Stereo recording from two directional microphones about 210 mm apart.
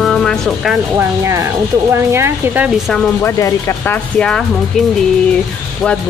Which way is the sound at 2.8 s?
5° left (ahead or behind).